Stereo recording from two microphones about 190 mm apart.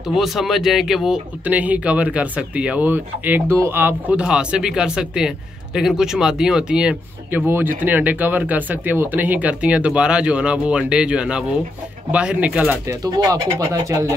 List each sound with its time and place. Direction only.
0.1 s speech: centre (ahead or behind)
13.0 s speech: 20° right (ahead or behind)